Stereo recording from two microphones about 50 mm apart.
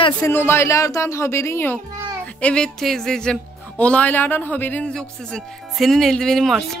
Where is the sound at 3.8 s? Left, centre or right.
Left.